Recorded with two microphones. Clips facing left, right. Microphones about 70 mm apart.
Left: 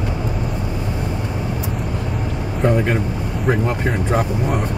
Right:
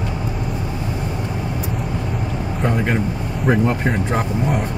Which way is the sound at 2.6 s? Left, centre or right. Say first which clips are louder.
Left 2 dB; centre.